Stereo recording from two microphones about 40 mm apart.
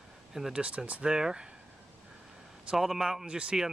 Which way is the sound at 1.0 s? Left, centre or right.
Centre.